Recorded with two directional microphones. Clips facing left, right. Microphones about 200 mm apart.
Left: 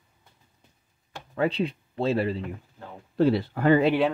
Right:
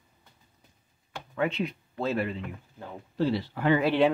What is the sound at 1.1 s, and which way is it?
Speech, 35° left (ahead or behind).